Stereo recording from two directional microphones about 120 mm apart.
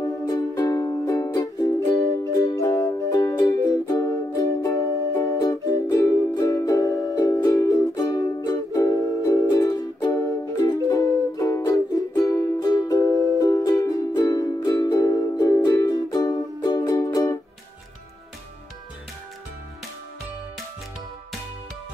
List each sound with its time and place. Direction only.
0.0 s music: 30° left (ahead or behind)